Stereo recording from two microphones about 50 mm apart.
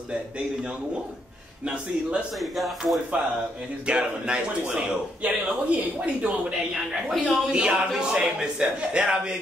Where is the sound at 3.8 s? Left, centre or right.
Right.